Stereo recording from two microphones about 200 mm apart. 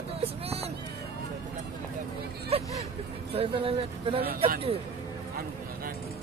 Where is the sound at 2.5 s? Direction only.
30° right (ahead or behind).